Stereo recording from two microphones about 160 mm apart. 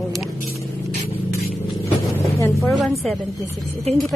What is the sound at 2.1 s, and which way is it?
Vehicle, 15° left (ahead or behind).